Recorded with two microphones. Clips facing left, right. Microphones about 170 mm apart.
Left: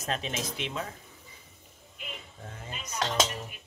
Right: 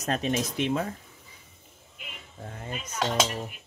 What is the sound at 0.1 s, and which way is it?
Speech, 50° right (ahead or behind).